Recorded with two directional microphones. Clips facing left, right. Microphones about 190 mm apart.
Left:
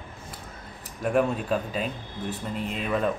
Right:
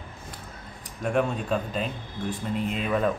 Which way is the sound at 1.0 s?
5° left (ahead or behind).